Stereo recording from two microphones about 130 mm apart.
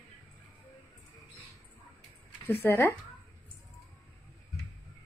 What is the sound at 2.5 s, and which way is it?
Speech, 15° left (ahead or behind).